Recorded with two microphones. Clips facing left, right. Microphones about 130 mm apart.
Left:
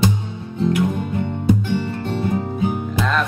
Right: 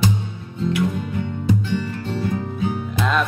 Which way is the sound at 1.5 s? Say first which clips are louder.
Left 3 dB; 15° left (ahead or behind).